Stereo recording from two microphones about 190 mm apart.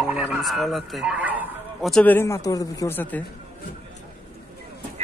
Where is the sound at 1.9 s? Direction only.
10° left (ahead or behind).